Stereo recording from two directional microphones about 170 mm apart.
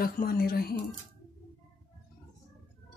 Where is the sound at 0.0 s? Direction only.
60° left (ahead or behind).